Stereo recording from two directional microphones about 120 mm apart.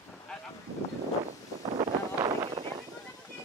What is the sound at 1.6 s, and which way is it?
Vehicle, 35° right (ahead or behind).